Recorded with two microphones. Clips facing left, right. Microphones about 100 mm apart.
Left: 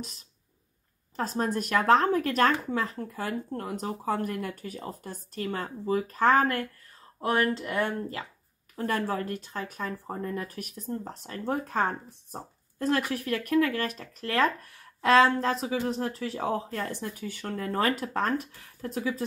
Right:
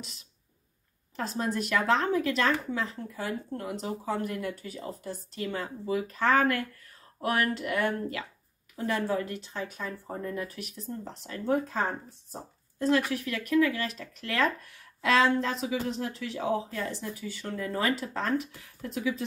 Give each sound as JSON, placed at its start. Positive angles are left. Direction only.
{"t": 1.1, "sound": "speech", "side_deg": 40}
{"t": 8.7, "sound": "speech", "side_deg": 45}
{"t": 11.6, "sound": "speech", "side_deg": 55}